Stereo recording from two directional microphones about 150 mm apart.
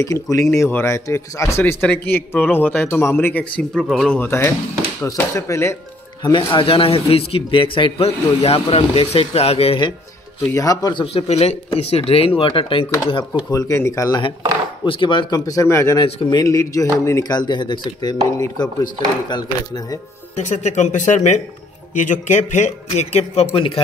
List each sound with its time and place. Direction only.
0.0 s speech: 20° left (ahead or behind); by 4.3 s 5° left (ahead or behind)
4.3 s speech: 15° left (ahead or behind)
6.2 s a man's voice: 35° left (ahead or behind)
10.5 s speech: 25° left (ahead or behind)
11.2 s a man's voice: 45° left (ahead or behind)
13.5 s speech: 20° left (ahead or behind)
14.9 s speech: 35° left (ahead or behind)
16.1 s a man's voice: 40° left (ahead or behind)
16.3 s speech: 20° left (ahead or behind)
20.3 s speech: 50° left (ahead or behind)